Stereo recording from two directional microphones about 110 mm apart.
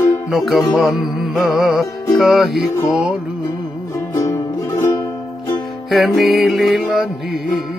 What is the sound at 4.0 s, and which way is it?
Music, 30° left (ahead or behind).